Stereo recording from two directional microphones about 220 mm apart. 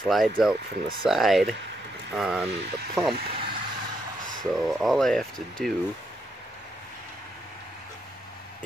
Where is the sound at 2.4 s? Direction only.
50° right (ahead or behind).